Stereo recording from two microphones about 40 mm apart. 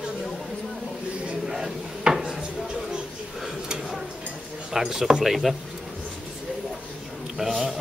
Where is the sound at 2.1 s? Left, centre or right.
Right.